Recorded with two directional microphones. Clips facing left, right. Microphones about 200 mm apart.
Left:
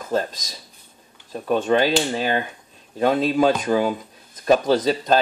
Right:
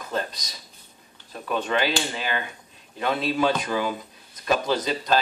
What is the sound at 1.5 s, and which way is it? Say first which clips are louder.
Speech: left 6 dB; 45° left (ahead or behind).